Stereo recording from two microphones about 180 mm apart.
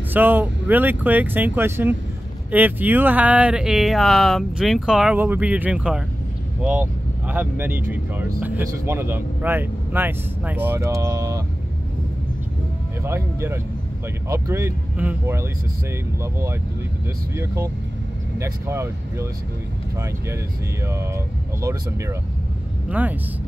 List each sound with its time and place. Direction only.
0.1 s speech: 10° right (ahead or behind)
13.0 s speech: 15° right (ahead or behind)
18.4 s speech: 15° right (ahead or behind)
20.8 s speech: 15° right (ahead or behind)